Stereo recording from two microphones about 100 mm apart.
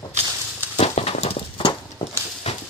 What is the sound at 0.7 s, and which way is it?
Horse, 90° left.